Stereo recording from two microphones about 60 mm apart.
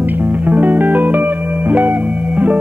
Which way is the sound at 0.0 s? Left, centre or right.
Right.